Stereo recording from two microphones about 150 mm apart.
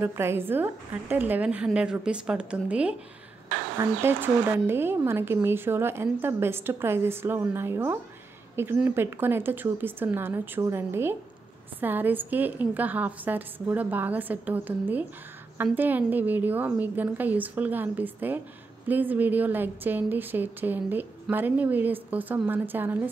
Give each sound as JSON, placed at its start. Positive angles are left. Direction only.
{"t": 0.0, "sound": "a woman's voice", "side_deg": -15}
{"t": 4.0, "sound": "a woman's voice", "side_deg": -15}